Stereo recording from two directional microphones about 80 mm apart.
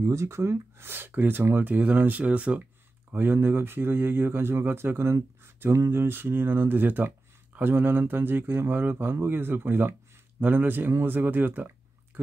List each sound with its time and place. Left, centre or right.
0.0 s speech: right